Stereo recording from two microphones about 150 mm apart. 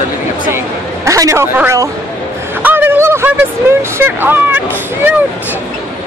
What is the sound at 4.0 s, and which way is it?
Speech, 15° right (ahead or behind).